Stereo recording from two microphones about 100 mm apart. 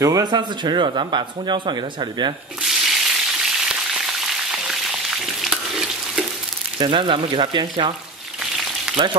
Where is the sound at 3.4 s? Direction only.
5° right (ahead or behind).